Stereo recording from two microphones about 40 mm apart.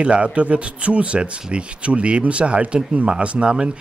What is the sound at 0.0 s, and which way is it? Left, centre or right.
A man's voice, right.